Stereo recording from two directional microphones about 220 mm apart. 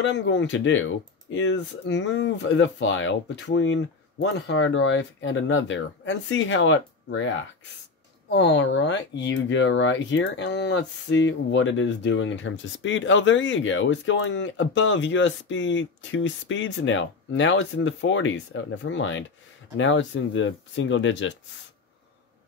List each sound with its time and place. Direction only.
0.0 s speech: 55° left (ahead or behind)